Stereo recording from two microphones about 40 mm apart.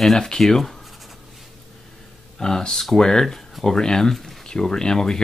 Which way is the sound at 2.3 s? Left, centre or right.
Centre.